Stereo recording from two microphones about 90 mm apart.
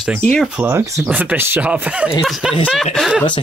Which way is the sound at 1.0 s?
15° right (ahead or behind).